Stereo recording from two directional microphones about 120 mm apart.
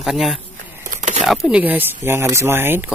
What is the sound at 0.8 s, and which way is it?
Crumpling, 90° right.